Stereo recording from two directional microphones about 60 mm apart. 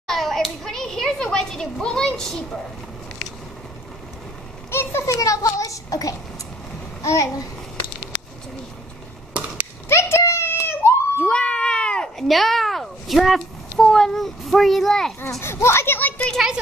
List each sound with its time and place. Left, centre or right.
0.0 s hands: centre
1.1 s a woman's voice: centre
4.6 s a child's voice: left
5.1 s a child's voice: left
9.8 s a sound: left
11.2 s cat: centre
12.3 s a child's voice: centre
15.4 s a child's voice: left
16.3 s a child's voice: centre